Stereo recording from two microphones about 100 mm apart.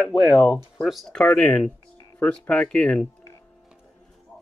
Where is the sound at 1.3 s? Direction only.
15° left (ahead or behind).